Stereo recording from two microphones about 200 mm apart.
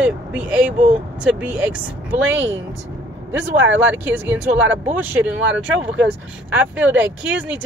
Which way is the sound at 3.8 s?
10° right (ahead or behind).